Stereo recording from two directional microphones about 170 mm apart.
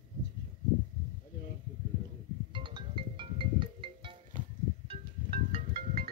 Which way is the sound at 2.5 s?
30° right (ahead or behind).